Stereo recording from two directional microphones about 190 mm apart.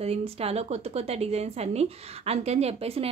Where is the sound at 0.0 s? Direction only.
30° right (ahead or behind).